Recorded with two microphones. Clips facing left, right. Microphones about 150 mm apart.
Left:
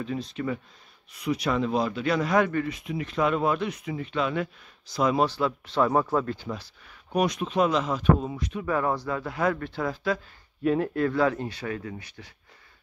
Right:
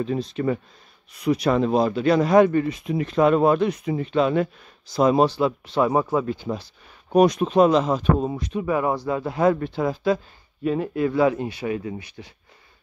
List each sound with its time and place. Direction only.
0.0 s speech: 35° right (ahead or behind)
5.2 s speech: 15° right (ahead or behind)
6.5 s speech: 25° right (ahead or behind)
8.6 s speech: 15° right (ahead or behind)
9.2 s speech: 25° right (ahead or behind)
10.6 s speech: centre (ahead or behind); by 12.3 s 20° right (ahead or behind)